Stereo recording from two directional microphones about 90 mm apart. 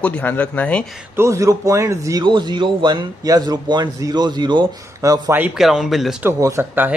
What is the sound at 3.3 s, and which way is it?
Speech, 45° right (ahead or behind).